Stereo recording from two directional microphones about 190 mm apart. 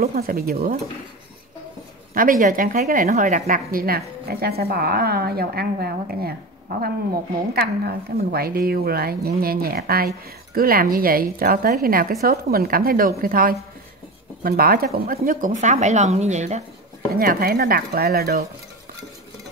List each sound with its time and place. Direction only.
0.0 s a woman's voice: 50° right (ahead or behind)
2.1 s a woman's voice: 45° right (ahead or behind)
15.1 s speech: 40° right (ahead or behind)
17.2 s a woman's voice: 50° right (ahead or behind)